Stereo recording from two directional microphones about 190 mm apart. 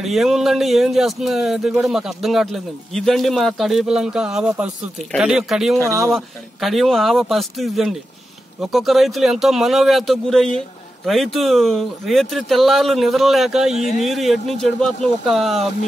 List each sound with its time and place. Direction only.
0.0 s speech: centre (ahead or behind)